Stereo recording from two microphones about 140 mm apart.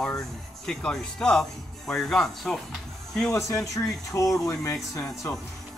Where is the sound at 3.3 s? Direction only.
20° left (ahead or behind).